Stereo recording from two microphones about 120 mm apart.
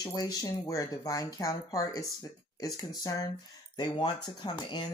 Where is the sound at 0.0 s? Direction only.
35° left (ahead or behind).